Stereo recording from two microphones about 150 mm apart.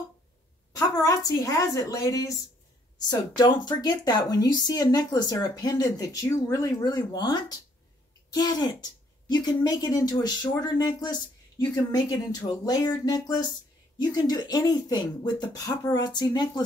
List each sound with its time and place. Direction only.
0.7 s speech: 25° left (ahead or behind)